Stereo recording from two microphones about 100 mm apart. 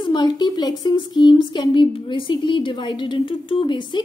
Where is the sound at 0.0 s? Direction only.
50° left (ahead or behind).